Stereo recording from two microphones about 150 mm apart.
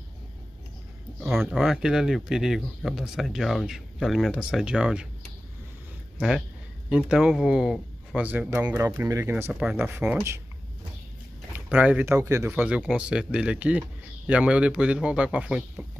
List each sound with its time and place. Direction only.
1.5 s speech: 5° right (ahead or behind)
6.1 s speech: 5° right (ahead or behind)
11.5 s speech: 10° right (ahead or behind)